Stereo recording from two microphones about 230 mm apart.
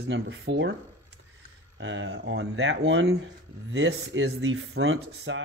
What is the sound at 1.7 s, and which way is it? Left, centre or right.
Speech, right.